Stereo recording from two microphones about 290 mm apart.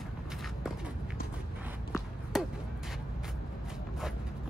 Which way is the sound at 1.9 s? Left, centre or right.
Centre.